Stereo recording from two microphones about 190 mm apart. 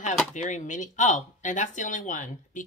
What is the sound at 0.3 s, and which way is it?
Speech, 40° left (ahead or behind).